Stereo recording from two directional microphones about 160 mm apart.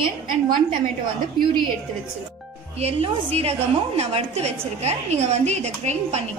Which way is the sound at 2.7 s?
40° right (ahead or behind).